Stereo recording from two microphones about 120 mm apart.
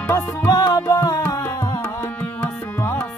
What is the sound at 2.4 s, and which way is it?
Tabla, 15° left (ahead or behind).